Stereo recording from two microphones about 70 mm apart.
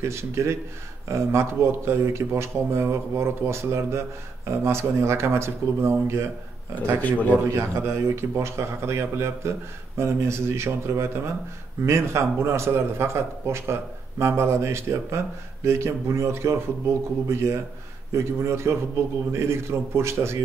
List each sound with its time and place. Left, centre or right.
0.0 s a man's voice: right
7.0 s a man's voice: left
7.4 s a man's voice: right